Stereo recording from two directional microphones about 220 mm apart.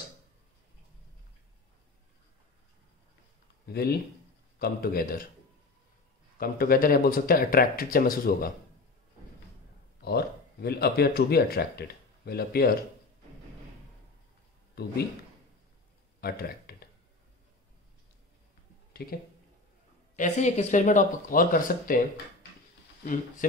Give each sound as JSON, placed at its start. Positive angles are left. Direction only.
{"t": 3.6, "sound": "speech", "side_deg": 45}
{"t": 6.3, "sound": "speech", "side_deg": 40}
{"t": 10.0, "sound": "speech", "side_deg": 45}
{"t": 16.2, "sound": "a sound", "side_deg": 45}
{"t": 19.0, "sound": "speech", "side_deg": 45}
{"t": 20.2, "sound": "speech", "side_deg": 30}